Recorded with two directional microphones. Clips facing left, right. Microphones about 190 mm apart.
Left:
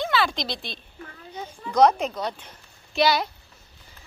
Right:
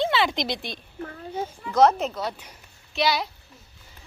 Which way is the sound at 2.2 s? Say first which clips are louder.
Even; 5° right (ahead or behind).